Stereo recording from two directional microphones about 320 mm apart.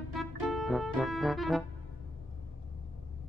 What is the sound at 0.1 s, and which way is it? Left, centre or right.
Music, centre.